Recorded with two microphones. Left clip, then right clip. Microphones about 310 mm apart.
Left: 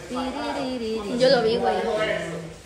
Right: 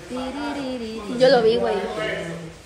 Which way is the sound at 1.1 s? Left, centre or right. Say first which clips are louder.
Right 4 dB; right.